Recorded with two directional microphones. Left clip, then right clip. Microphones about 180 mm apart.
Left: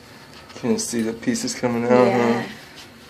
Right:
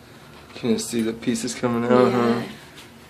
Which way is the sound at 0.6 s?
20° right (ahead or behind).